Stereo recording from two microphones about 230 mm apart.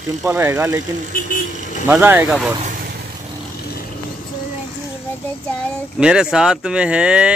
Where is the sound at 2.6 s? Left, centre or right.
Right.